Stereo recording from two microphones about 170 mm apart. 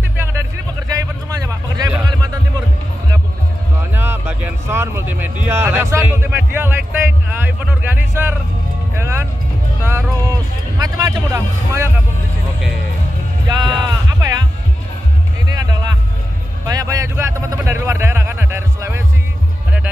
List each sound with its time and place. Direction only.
1.5 s music: 20° right (ahead or behind)
3.9 s a sound: 10° right (ahead or behind)
8.9 s music: 15° right (ahead or behind)
10.8 s speech: 20° right (ahead or behind)
13.5 s speech: 25° right (ahead or behind)
13.8 s sheep: 25° right (ahead or behind)
15.4 s music: 20° right (ahead or behind)
16.6 s a sound: 20° right (ahead or behind)